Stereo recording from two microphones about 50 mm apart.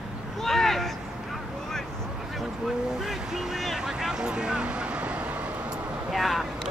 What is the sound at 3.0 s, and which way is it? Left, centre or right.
Music, centre.